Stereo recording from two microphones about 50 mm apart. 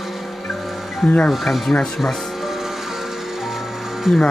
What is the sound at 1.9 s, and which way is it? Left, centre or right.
Music, centre.